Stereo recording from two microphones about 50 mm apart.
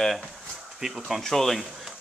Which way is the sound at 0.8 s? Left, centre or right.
Centre.